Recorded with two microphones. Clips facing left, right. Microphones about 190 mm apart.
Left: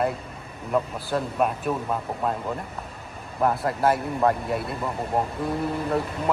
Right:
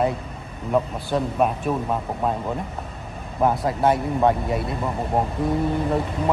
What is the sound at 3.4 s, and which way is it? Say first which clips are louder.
Speech: right 2 dB; centre (ahead or behind).